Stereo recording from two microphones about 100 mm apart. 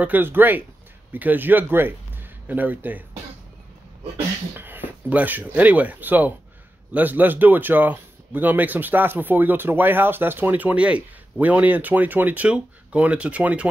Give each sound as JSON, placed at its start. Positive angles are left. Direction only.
{"t": 0.0, "sound": "speech", "side_deg": -15}
{"t": 4.6, "sound": "speech", "side_deg": -20}